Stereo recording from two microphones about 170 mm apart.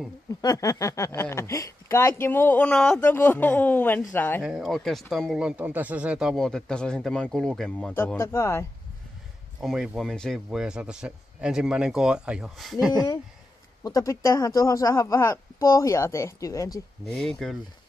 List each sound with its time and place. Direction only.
0.3 s speech: 20° left (ahead or behind)
4.4 s speech: 5° right (ahead or behind)
7.9 s speech: 15° left (ahead or behind)
9.6 s speech: centre (ahead or behind)
13.8 s speech: 20° left (ahead or behind)
17.0 s speech: 5° left (ahead or behind)